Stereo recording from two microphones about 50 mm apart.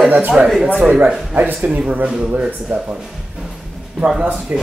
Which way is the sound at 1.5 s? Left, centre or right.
Right.